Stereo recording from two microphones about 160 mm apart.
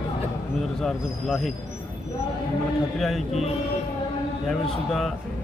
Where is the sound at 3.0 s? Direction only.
Centre (ahead or behind).